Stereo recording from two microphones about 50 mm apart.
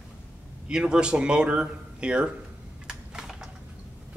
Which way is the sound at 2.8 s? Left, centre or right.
Centre.